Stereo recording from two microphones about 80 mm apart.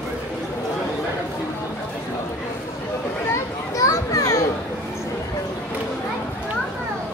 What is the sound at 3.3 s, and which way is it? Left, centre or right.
Children playing, left.